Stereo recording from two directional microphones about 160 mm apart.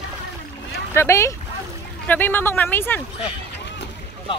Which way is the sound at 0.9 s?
15° left (ahead or behind).